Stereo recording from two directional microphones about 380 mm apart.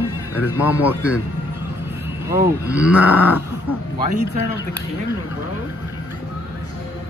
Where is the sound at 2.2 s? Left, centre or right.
Centre.